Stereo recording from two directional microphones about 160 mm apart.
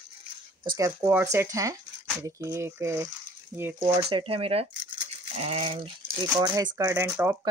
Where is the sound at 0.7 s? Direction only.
20° right (ahead or behind); by 5.9 s 35° right (ahead or behind).